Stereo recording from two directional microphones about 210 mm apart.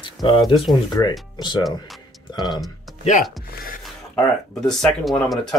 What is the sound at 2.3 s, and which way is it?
Speech, 20° left (ahead or behind).